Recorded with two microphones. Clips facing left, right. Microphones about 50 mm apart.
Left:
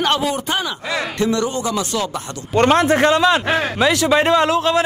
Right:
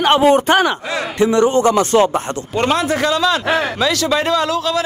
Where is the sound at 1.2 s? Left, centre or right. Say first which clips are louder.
Right 8 dB; right.